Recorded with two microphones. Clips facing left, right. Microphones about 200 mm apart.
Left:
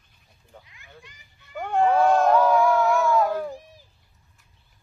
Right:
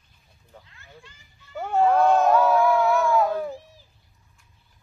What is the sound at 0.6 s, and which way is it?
Children playing, 15° left (ahead or behind).